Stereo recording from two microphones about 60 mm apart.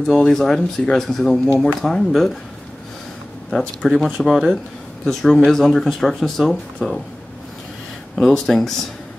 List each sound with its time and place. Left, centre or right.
0.0 s speech: centre
3.4 s speech: centre
5.0 s speech: centre
8.2 s speech: centre